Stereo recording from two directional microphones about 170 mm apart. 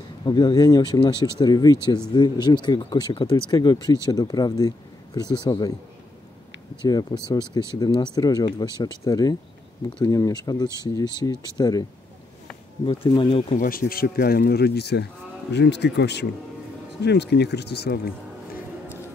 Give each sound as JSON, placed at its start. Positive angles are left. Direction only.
{"t": 0.2, "sound": "speech", "side_deg": 25}
{"t": 6.8, "sound": "speech", "side_deg": 25}
{"t": 12.8, "sound": "speech", "side_deg": 30}
{"t": 13.6, "sound": "a man's voice", "side_deg": 60}